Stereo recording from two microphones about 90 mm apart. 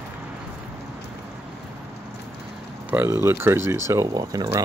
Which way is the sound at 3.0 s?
30° right (ahead or behind).